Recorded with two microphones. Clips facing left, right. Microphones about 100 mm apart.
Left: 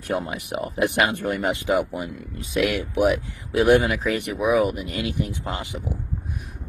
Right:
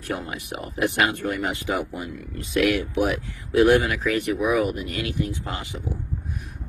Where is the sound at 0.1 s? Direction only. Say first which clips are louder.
Left 4 dB; 20° left (ahead or behind).